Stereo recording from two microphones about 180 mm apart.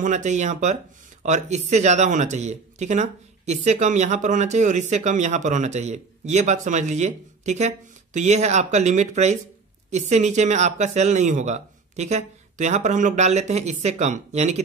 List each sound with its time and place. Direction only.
0.0 s speech: 40° right (ahead or behind)